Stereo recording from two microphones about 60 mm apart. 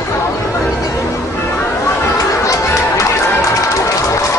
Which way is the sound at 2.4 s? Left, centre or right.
Left.